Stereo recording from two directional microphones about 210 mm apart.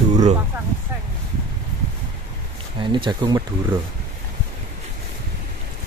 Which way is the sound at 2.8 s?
25° right (ahead or behind).